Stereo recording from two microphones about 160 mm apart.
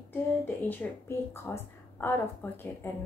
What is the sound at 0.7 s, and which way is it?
A woman's voice, 15° left (ahead or behind).